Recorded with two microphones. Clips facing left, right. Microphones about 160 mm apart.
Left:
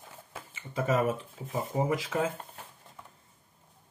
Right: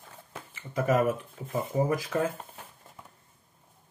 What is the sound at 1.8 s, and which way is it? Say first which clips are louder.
Speech: right 2 dB; 25° left (ahead or behind).